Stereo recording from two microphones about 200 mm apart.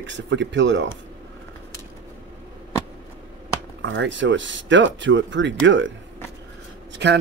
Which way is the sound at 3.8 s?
65° right (ahead or behind).